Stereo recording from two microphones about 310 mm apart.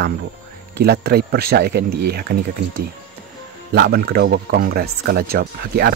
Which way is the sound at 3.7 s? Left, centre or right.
Right.